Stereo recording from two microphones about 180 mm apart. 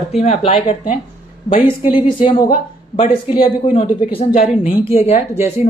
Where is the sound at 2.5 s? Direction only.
45° left (ahead or behind).